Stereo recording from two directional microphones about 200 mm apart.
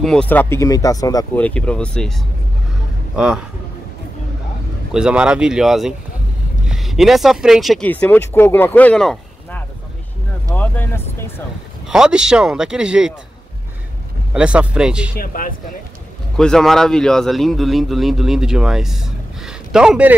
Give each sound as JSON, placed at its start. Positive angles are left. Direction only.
{"t": 0.0, "sound": "speech", "side_deg": 5}
{"t": 4.9, "sound": "speech", "side_deg": -5}
{"t": 11.9, "sound": "speech", "side_deg": -5}
{"t": 14.3, "sound": "speech", "side_deg": -5}
{"t": 15.1, "sound": "speech", "side_deg": 45}
{"t": 16.3, "sound": "speech", "side_deg": 0}